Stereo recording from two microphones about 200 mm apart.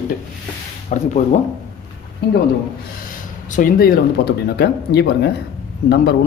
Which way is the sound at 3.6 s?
50° left (ahead or behind).